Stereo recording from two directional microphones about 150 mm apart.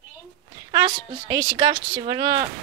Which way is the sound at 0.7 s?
30° right (ahead or behind).